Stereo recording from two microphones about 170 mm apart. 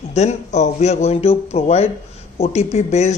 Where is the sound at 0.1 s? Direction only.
40° left (ahead or behind).